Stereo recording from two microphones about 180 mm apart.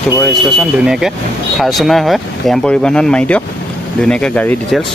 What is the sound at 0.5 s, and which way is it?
Speech, 5° right (ahead or behind).